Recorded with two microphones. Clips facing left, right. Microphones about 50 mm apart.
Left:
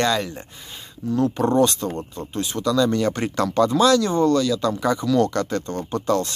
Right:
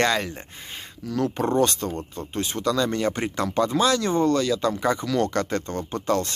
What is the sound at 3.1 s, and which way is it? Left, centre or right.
Speech, centre.